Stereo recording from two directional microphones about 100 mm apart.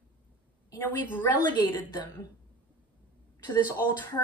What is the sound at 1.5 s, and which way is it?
Speech, 45° left (ahead or behind).